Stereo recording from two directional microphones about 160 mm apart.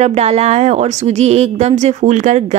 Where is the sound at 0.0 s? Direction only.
45° right (ahead or behind).